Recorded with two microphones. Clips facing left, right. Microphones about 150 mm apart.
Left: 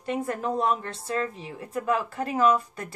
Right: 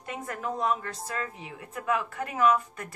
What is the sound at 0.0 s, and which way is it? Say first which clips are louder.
A woman's voice: left 6 dB; 30° left (ahead or behind).